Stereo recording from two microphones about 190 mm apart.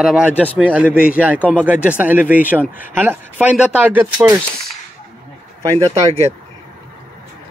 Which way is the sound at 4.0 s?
15° right (ahead or behind).